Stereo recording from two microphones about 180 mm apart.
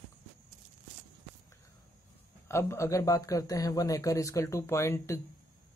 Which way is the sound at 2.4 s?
15° left (ahead or behind).